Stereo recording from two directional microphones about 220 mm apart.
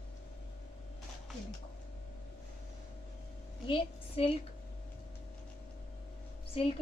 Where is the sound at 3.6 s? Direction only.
20° left (ahead or behind).